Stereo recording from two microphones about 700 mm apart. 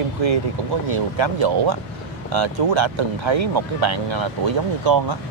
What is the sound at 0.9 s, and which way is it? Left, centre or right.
Speech, right.